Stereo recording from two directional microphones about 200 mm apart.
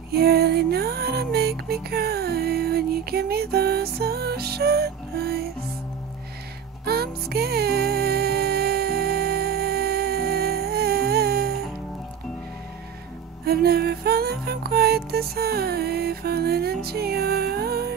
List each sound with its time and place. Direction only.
0.1 s music: 50° right (ahead or behind)
6.9 s music: 50° right (ahead or behind)
13.5 s music: 50° right (ahead or behind)